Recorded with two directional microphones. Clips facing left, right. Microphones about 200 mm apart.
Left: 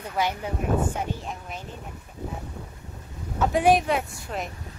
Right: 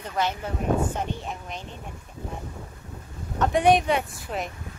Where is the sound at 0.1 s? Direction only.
10° left (ahead or behind).